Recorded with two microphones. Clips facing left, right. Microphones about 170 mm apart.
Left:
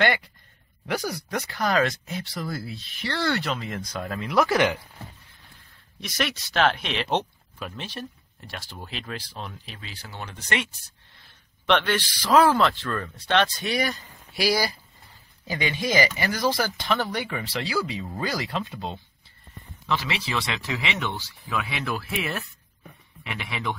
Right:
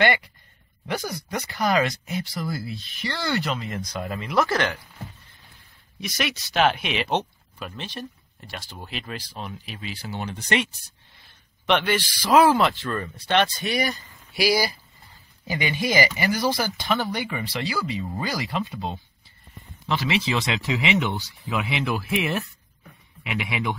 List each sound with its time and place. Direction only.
0.9 s speech: centre (ahead or behind)
5.9 s speech: 5° right (ahead or behind)
9.8 s speech: 20° right (ahead or behind)
11.6 s speech: 5° right (ahead or behind)
12.3 s speech: 15° right (ahead or behind); by 18.9 s centre (ahead or behind)
19.9 s speech: 20° right (ahead or behind)